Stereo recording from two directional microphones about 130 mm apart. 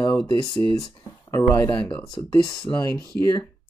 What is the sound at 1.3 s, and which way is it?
Speech, 25° left (ahead or behind).